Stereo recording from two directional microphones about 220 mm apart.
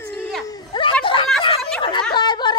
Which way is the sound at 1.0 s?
25° left (ahead or behind).